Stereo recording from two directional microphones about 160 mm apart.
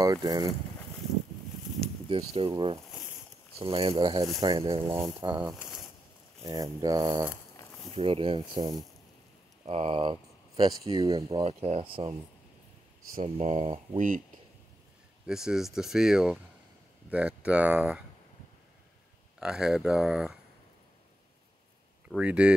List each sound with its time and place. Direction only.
0.0 s speech: 20° right (ahead or behind)
2.0 s speech: 35° right (ahead or behind)
4.9 s speech: 25° right (ahead or behind)
5.4 s speech: 5° right (ahead or behind)
6.4 s speech: 25° right (ahead or behind)
7.6 s a sound: 20° left (ahead or behind)
7.9 s speech: 35° right (ahead or behind)
9.7 s speech: 40° right (ahead or behind)
10.5 s a sound: 25° right (ahead or behind)
10.9 s speech: 25° right (ahead or behind)
13.1 s speech: 45° right (ahead or behind)
15.2 s speech: 5° right (ahead or behind)
19.4 s speech: 5° right (ahead or behind)
22.1 s speech: 5° right (ahead or behind)